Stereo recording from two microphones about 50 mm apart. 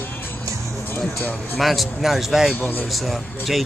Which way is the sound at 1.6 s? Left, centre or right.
Centre.